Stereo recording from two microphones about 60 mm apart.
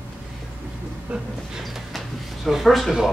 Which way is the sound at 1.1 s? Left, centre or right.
Right.